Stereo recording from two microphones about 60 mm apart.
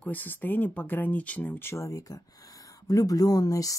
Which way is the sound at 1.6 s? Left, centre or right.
Left.